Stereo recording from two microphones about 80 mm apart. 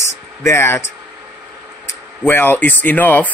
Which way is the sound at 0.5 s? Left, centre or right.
Left.